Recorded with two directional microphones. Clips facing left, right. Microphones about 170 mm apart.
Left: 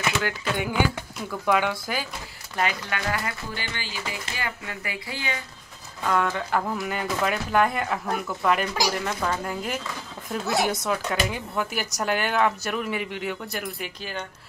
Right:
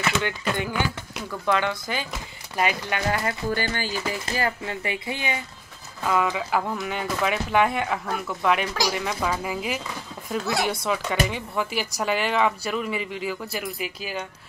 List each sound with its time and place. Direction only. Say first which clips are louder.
0.2 s speech: even; 10° left (ahead or behind)
2.5 s speech: right 2 dB; 15° right (ahead or behind)
3.5 s speech: right 7 dB; 45° right (ahead or behind)
4.8 s speech: right 3 dB; 20° right (ahead or behind)
6.0 s speech: right 1 dB; 5° right (ahead or behind)